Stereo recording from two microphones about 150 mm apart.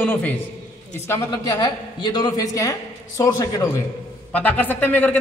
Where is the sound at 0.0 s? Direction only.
10° left (ahead or behind).